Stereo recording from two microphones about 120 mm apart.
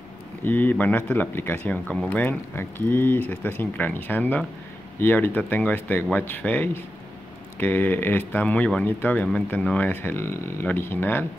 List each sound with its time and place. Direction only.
0.4 s speech: 15° left (ahead or behind)